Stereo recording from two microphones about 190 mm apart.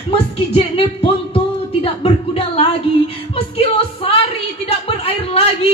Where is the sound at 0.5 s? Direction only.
30° left (ahead or behind).